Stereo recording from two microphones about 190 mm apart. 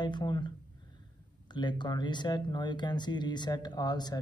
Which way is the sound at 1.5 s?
25° left (ahead or behind).